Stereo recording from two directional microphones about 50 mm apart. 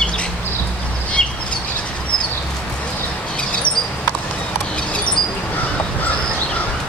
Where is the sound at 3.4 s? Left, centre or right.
Left.